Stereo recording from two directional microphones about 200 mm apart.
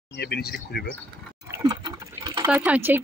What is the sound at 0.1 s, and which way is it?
Speech, 55° left (ahead or behind).